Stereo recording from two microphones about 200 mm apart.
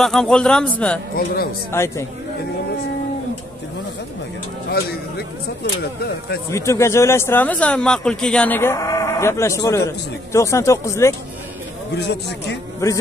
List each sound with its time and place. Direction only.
0.0 s a man's voice: 5° left (ahead or behind)
1.1 s speech: 50° left (ahead or behind)
1.7 s speech: 15° left (ahead or behind)
4.6 s speech: 50° left (ahead or behind)
6.5 s speech: 15° left (ahead or behind)
11.9 s speech: 60° left (ahead or behind)
12.8 s speech: 15° left (ahead or behind)